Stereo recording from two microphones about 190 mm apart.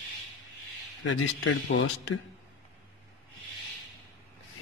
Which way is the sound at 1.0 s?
90° left.